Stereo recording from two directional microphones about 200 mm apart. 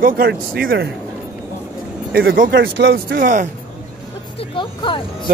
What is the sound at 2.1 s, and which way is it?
Speech, 50° right (ahead or behind).